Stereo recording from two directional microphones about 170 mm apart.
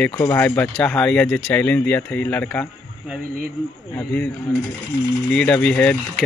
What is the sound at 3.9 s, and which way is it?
Speech, 10° left (ahead or behind).